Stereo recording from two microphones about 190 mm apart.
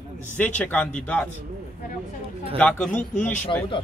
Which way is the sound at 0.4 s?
10° left (ahead or behind).